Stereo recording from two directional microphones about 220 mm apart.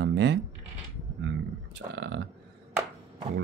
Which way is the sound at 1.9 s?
50° right (ahead or behind).